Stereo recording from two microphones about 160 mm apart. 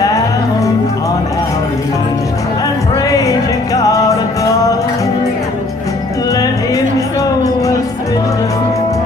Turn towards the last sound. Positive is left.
turn(degrees=20)  # may be behind; listen again after turning